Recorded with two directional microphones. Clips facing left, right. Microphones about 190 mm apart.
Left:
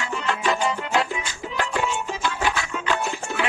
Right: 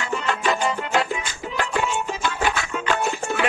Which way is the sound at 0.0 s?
50° right (ahead or behind).